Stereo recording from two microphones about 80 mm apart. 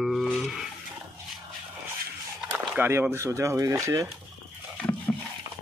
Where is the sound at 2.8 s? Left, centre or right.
Right.